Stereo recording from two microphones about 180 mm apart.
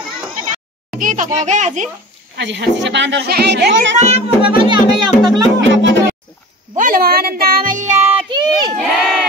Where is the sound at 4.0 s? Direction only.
35° right (ahead or behind).